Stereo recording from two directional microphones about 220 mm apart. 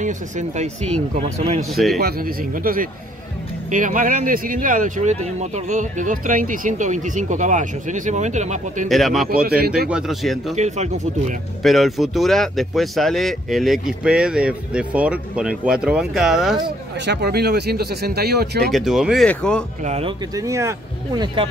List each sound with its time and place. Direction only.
0.0 s a man's voice: 35° right (ahead or behind)
1.7 s speech: centre (ahead or behind)
2.0 s speech: 45° right (ahead or behind)
8.8 s speech: centre (ahead or behind)
10.5 s speech: 30° right (ahead or behind)
11.6 s speech: centre (ahead or behind)
16.6 s speech: 50° right (ahead or behind)
18.7 s speech: centre (ahead or behind)
19.8 s a man's voice: 30° right (ahead or behind)
20.3 s speech: 15° right (ahead or behind)